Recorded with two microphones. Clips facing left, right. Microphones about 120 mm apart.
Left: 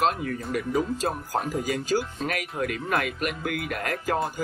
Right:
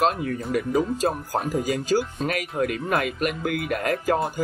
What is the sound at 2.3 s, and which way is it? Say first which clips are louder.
Speech: right 4 dB; 25° right (ahead or behind).